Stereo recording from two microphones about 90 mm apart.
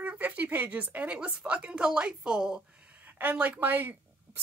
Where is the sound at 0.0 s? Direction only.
15° right (ahead or behind).